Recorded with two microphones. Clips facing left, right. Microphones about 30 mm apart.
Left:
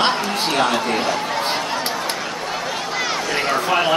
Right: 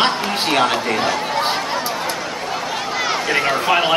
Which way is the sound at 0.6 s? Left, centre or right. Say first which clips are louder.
Right 1 dB; centre.